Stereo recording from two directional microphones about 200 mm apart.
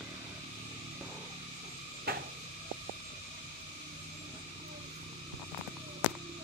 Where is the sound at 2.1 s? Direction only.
50° right (ahead or behind).